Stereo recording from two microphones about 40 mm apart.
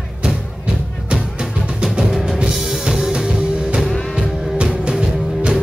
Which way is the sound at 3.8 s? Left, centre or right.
Centre.